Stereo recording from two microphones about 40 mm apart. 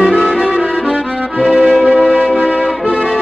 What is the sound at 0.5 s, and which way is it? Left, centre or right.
Music, right.